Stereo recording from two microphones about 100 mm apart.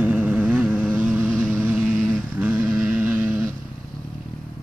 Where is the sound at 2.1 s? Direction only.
15° right (ahead or behind).